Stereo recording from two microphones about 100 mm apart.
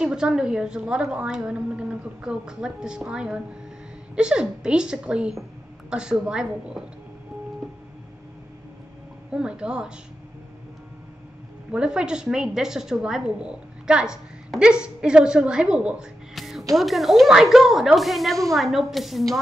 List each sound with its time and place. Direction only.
0.0 s a woman's voice: 10° right (ahead or behind)
9.3 s a woman's voice: 10° right (ahead or behind)
11.7 s a woman's voice: 10° right (ahead or behind)
16.3 s a sound: centre (ahead or behind)
16.7 s speech: centre (ahead or behind)